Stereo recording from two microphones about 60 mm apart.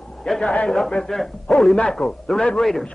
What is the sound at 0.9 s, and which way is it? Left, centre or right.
Speech, centre.